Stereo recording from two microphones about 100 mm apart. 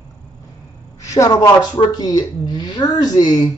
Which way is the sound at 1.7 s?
45° left (ahead or behind).